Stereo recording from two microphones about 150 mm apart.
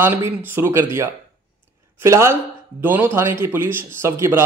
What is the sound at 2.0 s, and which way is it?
A man's voice, 15° right (ahead or behind).